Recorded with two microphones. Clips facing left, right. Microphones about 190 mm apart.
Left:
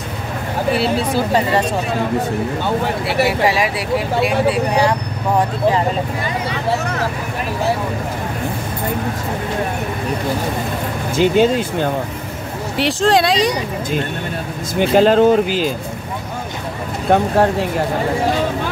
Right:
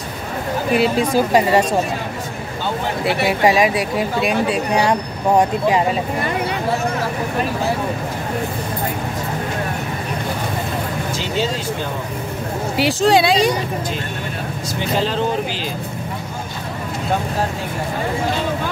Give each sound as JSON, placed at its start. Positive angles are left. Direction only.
{"t": 0.7, "sound": "speech", "side_deg": -15}
{"t": 3.4, "sound": "speech", "side_deg": -20}
{"t": 6.5, "sound": "speech", "side_deg": 65}
{"t": 11.1, "sound": "speech", "side_deg": 55}
{"t": 12.7, "sound": "speech", "side_deg": 0}
{"t": 14.8, "sound": "speech", "side_deg": 50}
{"t": 17.1, "sound": "speech", "side_deg": 65}